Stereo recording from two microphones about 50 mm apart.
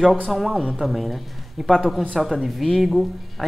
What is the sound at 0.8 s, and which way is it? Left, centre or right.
Speech, centre.